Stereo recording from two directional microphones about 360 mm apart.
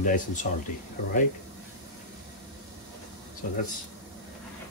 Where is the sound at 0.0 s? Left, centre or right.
Left.